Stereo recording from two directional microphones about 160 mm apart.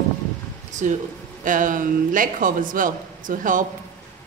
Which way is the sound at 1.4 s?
55° right (ahead or behind).